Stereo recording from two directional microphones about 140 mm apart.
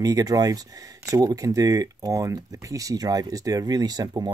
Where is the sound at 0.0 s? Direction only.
25° right (ahead or behind).